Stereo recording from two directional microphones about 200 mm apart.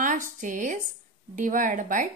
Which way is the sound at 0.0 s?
40° right (ahead or behind).